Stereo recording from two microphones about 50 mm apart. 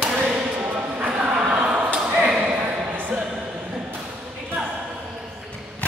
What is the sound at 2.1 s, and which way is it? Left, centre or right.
Ping, centre.